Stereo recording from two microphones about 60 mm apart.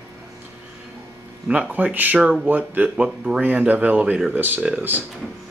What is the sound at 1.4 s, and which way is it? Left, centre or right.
Speech, right.